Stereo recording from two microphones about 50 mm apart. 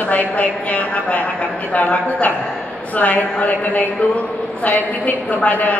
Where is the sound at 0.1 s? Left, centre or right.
Left.